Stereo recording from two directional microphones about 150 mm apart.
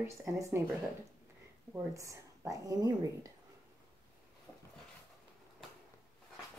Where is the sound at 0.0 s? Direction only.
15° right (ahead or behind).